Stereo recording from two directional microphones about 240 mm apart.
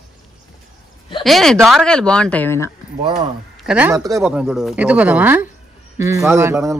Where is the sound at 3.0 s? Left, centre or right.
Right.